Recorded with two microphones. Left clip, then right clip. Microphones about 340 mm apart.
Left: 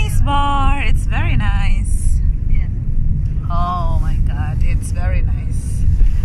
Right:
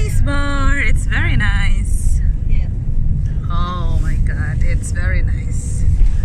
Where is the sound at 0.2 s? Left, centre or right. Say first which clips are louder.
Left 5 dB; left.